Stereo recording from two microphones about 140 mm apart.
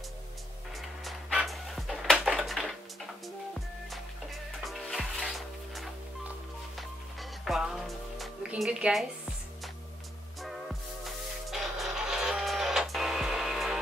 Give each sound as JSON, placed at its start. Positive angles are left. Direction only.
{"t": 0.7, "sound": "a sound", "side_deg": 0}
{"t": 4.6, "sound": "music", "side_deg": 0}
{"t": 6.8, "sound": "music", "side_deg": 0}
{"t": 11.1, "sound": "printer", "side_deg": 0}